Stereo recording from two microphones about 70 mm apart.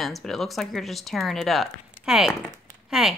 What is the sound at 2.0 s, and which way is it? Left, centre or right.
Speech, centre.